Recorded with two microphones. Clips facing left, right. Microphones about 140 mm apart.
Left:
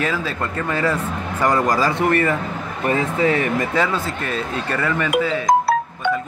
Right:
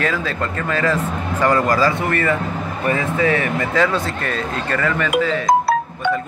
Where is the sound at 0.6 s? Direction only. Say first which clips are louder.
Right 2 dB; 15° left (ahead or behind).